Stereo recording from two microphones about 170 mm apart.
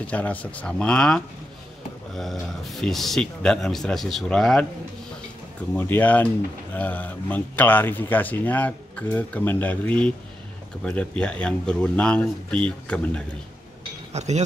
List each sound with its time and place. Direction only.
0.0 s a man's voice: 10° left (ahead or behind)
2.6 s a man's voice: centre (ahead or behind)
5.8 s a man's voice: 10° left (ahead or behind)
14.1 s speech: 40° right (ahead or behind)